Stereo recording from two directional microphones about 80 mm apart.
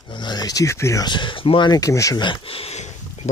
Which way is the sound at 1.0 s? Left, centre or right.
Left.